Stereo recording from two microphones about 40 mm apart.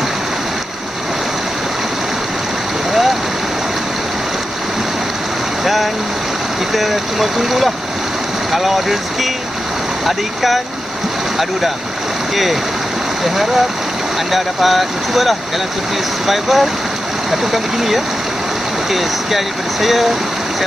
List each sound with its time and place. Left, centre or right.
6.7 s speech: centre
14.3 s speech: centre
17.7 s speech: centre